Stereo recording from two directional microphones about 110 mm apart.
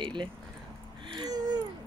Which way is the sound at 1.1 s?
35° right (ahead or behind).